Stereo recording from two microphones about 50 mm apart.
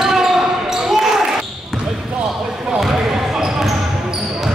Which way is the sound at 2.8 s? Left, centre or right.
Centre.